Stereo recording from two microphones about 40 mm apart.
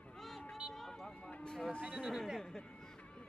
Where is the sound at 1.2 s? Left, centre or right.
Left.